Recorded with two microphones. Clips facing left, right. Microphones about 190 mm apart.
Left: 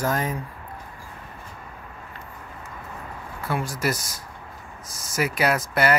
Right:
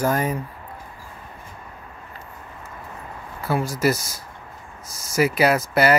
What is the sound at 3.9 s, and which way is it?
Speech, 30° right (ahead or behind).